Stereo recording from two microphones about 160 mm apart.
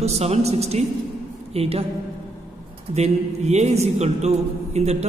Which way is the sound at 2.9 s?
45° right (ahead or behind).